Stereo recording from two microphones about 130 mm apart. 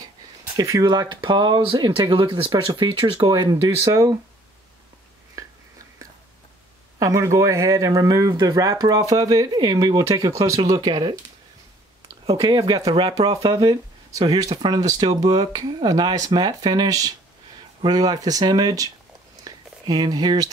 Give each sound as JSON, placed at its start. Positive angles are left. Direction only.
{"t": 0.6, "sound": "speech", "side_deg": -30}
{"t": 7.0, "sound": "speech", "side_deg": -25}
{"t": 12.4, "sound": "speech", "side_deg": -30}
{"t": 19.4, "sound": "a sound", "side_deg": -30}